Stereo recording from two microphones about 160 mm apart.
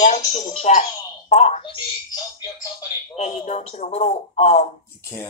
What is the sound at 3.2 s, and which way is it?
Speech, 45° left (ahead or behind).